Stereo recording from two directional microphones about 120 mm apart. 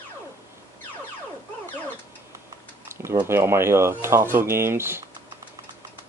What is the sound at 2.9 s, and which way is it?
Speech, 20° right (ahead or behind).